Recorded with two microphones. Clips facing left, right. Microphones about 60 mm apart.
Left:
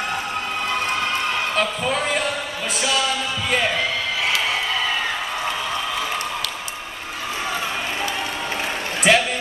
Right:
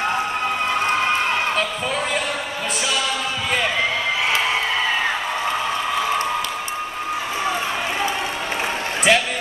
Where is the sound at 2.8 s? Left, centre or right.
Centre.